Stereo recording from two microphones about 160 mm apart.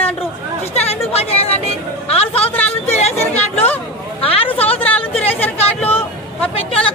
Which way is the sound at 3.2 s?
10° left (ahead or behind).